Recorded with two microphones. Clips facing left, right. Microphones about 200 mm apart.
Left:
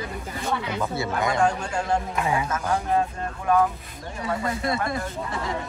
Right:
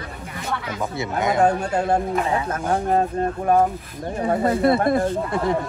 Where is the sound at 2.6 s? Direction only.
45° right (ahead or behind).